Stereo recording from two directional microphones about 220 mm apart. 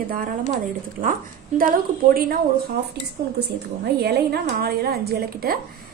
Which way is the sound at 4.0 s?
45° right (ahead or behind).